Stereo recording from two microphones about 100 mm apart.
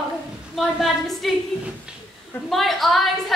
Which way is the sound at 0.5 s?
Centre (ahead or behind).